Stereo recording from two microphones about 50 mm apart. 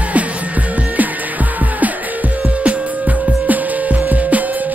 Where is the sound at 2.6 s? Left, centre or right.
Right.